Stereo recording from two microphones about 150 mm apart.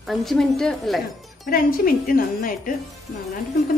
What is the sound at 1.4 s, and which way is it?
Speech, 70° left (ahead or behind).